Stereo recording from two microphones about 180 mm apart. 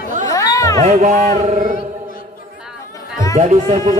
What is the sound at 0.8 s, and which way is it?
Speech, 40° right (ahead or behind).